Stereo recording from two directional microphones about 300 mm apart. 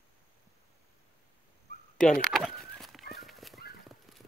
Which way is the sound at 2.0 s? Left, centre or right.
Centre.